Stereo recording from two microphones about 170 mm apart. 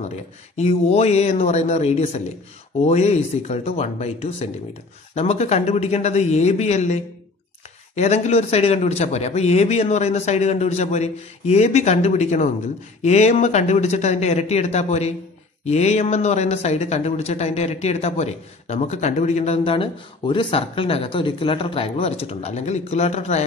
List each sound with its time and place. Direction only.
0.6 s speech: 40° left (ahead or behind)